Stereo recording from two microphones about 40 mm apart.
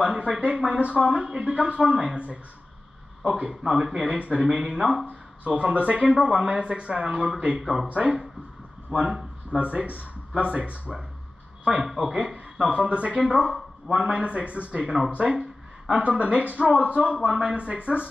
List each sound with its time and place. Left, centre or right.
0.0 s speech: right
2.1 s speech: right
3.6 s speech: centre
5.4 s speech: right
7.6 s speech: centre
7.9 s speech: right
9.0 s a sound: right
9.6 s speech: right
17.3 s speech: centre